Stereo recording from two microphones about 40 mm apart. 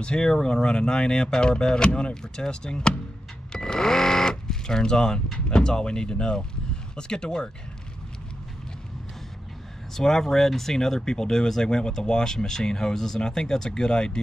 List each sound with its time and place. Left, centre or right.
0.0 s speech: left
9.9 s speech: centre